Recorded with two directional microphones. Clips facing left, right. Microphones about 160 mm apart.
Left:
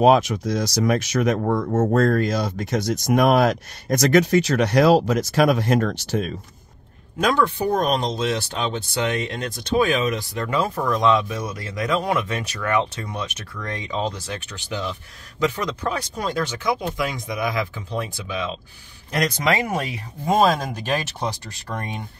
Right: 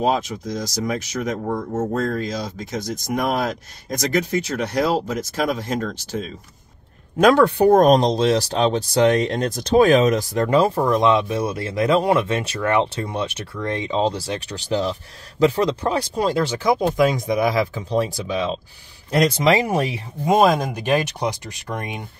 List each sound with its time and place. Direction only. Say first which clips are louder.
0.0 s speech: left 5 dB; 75° left (ahead or behind)
7.2 s speech: right 6 dB; 60° right (ahead or behind)
7.8 s speech: right 7 dB; 40° right (ahead or behind)
20.2 s speech: right 2 dB; 15° right (ahead or behind)